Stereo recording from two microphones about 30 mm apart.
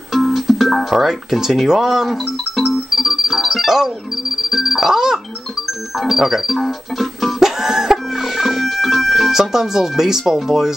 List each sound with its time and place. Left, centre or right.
0.1 s music: centre
0.9 s speech: centre
2.0 s music: centre
2.9 s speech: centre
4.5 s music: centre
4.8 s speech: centre
7.3 s music: centre
9.3 s speech: centre